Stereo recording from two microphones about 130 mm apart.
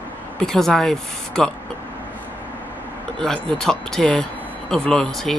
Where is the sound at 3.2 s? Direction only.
5° left (ahead or behind).